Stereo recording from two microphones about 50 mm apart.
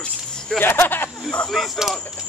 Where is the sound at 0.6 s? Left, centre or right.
Left.